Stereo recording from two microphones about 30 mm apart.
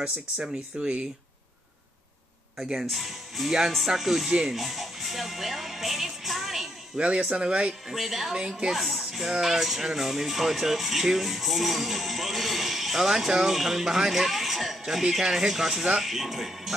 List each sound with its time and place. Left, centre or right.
0.0 s speech: right
2.5 s speech: centre
2.9 s speech: centre
4.3 s speech: right
4.6 s music: centre
7.2 s speech: right
7.9 s speech: centre
8.4 s speech: right
8.7 s speech: centre